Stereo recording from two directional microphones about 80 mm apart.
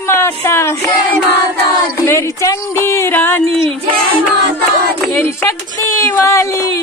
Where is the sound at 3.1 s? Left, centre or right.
Left.